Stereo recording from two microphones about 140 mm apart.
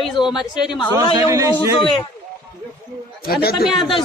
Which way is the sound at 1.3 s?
20° right (ahead or behind).